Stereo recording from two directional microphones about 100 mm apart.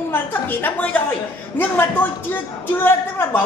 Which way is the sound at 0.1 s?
20° left (ahead or behind).